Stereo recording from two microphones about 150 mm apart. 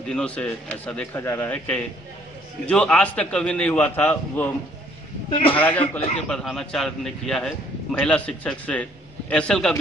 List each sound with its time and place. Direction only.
0.1 s a man's voice: 10° left (ahead or behind)
5.3 s a man's voice: 40° left (ahead or behind)
5.6 s a man's voice: 10° left (ahead or behind)